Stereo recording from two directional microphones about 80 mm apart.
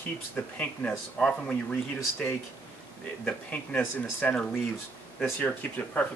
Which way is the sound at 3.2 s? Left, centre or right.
Centre.